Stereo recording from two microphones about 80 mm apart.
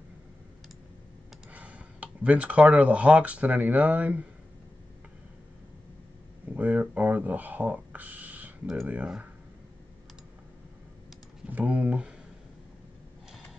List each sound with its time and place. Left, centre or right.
1.5 s speech: centre
6.5 s speech: right
11.5 s speech: centre